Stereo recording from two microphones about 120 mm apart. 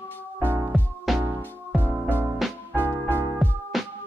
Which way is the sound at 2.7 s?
15° right (ahead or behind).